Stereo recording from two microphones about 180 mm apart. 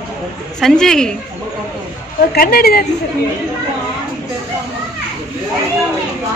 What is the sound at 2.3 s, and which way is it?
Speech, 55° left (ahead or behind).